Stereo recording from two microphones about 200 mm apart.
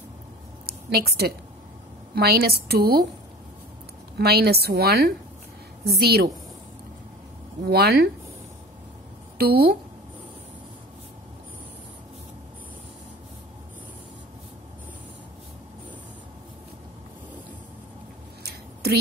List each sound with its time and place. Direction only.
0.7 s a woman's voice: 50° right (ahead or behind)
4.2 s a woman's voice: 50° right (ahead or behind)
7.6 s a woman's voice: 50° right (ahead or behind)
9.4 s a woman's voice: 50° right (ahead or behind)
18.5 s a sound: 50° right (ahead or behind)